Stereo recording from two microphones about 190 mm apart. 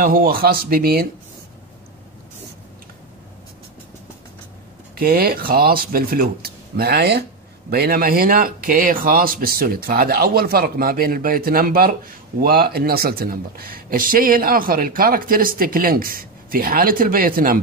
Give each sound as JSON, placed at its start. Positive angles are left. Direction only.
{"t": 0.0, "sound": "speech", "side_deg": -50}
{"t": 4.9, "sound": "speech", "side_deg": -50}